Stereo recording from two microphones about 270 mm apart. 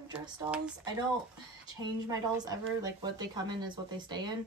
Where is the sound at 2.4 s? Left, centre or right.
Centre.